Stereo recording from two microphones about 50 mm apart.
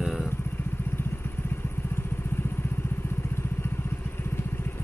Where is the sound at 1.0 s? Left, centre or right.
Left.